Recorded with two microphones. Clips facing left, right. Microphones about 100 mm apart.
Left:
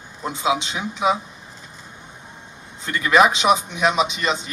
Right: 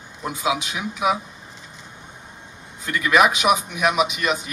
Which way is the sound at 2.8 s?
30° left (ahead or behind).